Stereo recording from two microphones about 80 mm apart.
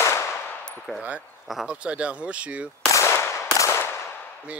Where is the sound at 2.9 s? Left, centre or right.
Left.